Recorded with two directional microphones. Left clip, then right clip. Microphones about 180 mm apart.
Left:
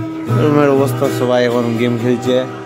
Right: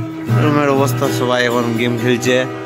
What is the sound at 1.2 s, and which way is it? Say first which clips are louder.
Speech: left 2 dB; 10° left (ahead or behind).